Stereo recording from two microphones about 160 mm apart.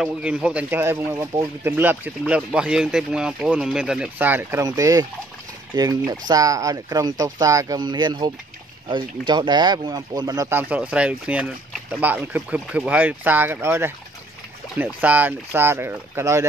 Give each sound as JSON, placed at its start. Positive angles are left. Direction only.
{"t": 0.0, "sound": "speech", "side_deg": -5}